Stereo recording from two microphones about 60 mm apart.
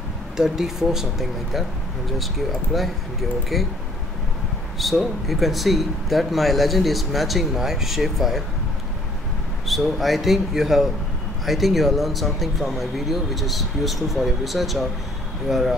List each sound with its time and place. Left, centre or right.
0.4 s speech: centre
4.7 s speech: centre
9.7 s speech: centre